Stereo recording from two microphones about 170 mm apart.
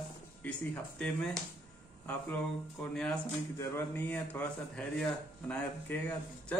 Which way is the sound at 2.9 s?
5° left (ahead or behind).